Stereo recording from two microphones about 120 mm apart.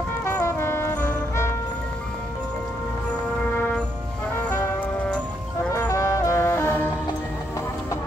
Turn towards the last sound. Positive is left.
turn(degrees=20)  # may be behind; listen again after turning